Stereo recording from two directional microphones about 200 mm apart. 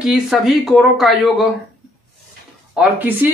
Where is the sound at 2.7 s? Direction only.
10° right (ahead or behind).